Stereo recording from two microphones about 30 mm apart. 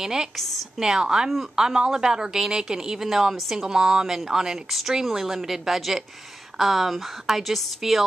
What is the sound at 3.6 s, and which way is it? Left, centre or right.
A woman's voice, right.